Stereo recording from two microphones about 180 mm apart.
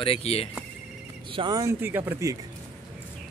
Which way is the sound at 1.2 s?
25° right (ahead or behind).